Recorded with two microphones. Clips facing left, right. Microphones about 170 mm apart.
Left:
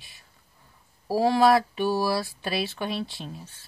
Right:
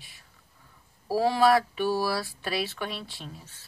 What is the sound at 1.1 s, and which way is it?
Speech, 20° left (ahead or behind).